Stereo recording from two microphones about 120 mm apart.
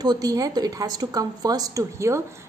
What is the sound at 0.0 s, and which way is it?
A woman's voice, 35° right (ahead or behind).